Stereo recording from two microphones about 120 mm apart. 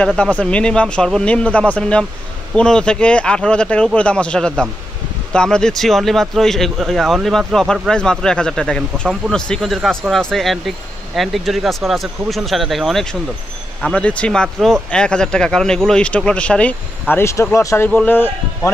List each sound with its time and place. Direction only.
0.0 s speech: 10° left (ahead or behind)
17.1 s speech: 25° left (ahead or behind)
17.8 s speech: 15° left (ahead or behind)